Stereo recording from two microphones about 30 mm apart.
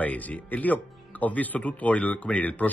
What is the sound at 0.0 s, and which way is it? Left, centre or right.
A man's voice, left.